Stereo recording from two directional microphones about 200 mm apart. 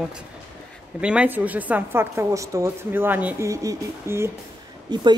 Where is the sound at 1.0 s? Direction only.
5° right (ahead or behind).